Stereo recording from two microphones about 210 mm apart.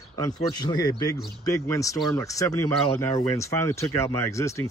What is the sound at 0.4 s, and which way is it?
Speech, 20° left (ahead or behind).